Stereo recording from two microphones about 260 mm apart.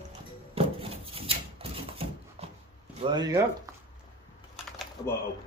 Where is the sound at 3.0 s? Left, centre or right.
Centre.